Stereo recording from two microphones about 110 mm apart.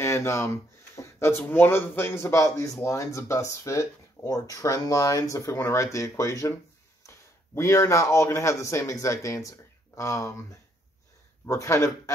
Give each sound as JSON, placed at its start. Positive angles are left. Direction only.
{"t": 0.0, "sound": "a man's voice", "side_deg": 25}